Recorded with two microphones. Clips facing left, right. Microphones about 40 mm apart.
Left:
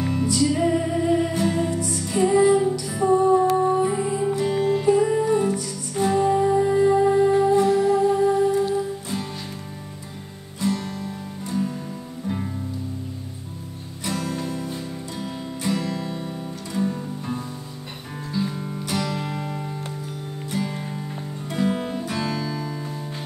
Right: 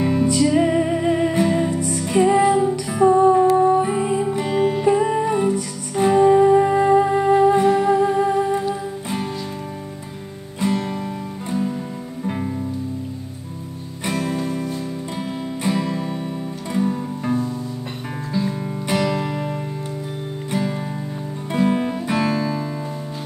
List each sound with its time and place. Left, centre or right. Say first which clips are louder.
0.0 s music: right 4 dB; right
10.6 s music: right 4 dB; right
14.0 s music: right 4 dB; right
18.3 s music: right 3 dB; right
18.9 s music: right 6 dB; right
19.2 s music: right 4 dB; centre
20.5 s music: right 4 dB; right